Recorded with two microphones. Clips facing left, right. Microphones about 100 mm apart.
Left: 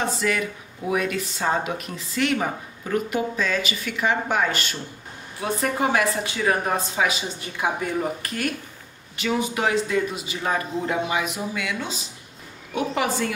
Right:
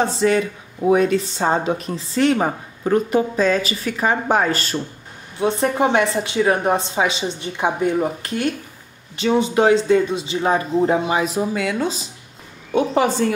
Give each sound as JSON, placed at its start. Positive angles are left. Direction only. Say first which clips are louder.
{"t": 0.0, "sound": "speech", "louder": "right 7 dB", "side_deg": -30}